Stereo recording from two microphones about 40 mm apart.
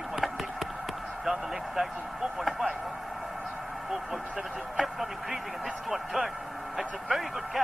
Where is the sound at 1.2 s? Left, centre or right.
Centre.